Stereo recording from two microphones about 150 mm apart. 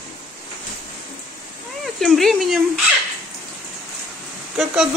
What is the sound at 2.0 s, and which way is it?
Speech, centre (ahead or behind).